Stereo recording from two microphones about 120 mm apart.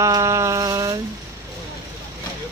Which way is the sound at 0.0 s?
25° right (ahead or behind).